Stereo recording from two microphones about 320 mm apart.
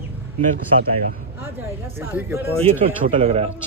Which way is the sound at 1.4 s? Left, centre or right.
Centre.